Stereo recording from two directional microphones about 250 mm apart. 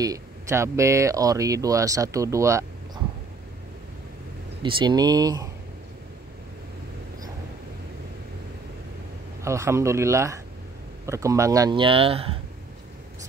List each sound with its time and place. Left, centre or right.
0.0 s speech: centre
4.6 s speech: centre
9.4 s speech: centre